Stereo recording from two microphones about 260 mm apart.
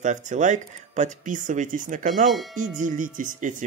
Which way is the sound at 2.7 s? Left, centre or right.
Right.